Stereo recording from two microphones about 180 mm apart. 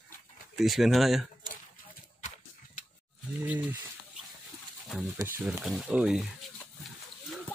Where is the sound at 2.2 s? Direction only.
40° left (ahead or behind).